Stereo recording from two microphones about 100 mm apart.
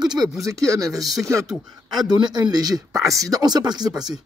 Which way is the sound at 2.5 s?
40° right (ahead or behind).